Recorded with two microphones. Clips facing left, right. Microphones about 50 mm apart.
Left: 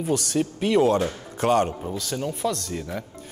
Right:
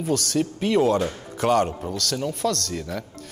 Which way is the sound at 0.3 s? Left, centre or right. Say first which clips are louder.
Left 1 dB; left.